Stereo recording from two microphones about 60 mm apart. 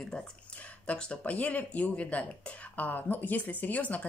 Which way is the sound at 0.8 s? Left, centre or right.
Centre.